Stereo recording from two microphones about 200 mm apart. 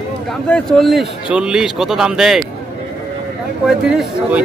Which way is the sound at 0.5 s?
Centre (ahead or behind).